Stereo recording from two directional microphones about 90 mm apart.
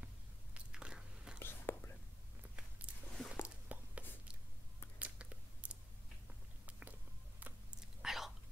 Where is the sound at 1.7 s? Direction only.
25° left (ahead or behind).